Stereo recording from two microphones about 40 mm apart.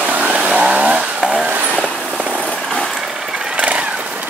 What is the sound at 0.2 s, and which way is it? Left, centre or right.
Chainsaw, right.